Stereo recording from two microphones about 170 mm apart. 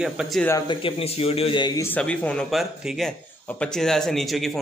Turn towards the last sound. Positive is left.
turn(degrees=0)  # may be behind; listen again after turning